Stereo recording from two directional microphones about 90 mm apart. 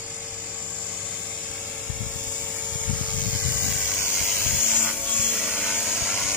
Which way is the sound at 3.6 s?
15° right (ahead or behind).